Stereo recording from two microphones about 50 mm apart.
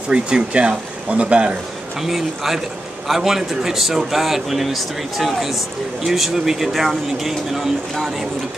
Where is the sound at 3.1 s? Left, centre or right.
Centre.